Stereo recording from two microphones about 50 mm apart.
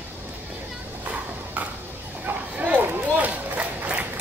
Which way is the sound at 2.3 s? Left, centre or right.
Right.